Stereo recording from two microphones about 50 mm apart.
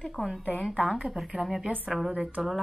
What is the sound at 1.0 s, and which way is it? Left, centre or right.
Speech, centre.